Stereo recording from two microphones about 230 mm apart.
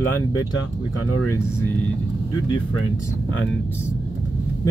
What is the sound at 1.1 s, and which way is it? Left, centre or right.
Speech, left.